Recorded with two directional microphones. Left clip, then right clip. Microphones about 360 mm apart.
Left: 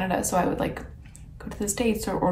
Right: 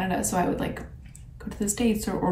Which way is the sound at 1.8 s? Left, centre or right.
Centre.